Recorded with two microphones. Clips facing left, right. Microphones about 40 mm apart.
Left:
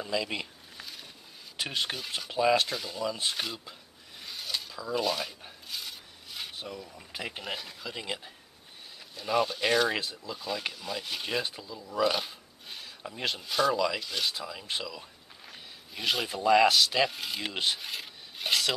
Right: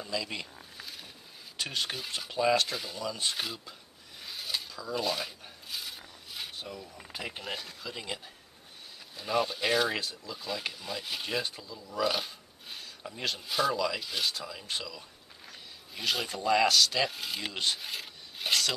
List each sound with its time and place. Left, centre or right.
0.0 s speech: centre
0.7 s a sound: centre
1.6 s speech: centre
4.2 s a sound: centre
7.1 s speech: centre
12.1 s a sound: centre
13.1 s speech: centre
13.4 s speech: centre
14.3 s speech: centre